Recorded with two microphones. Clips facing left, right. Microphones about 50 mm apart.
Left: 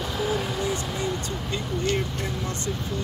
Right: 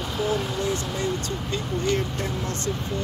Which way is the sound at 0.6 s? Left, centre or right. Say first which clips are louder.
Right 1 dB; centre.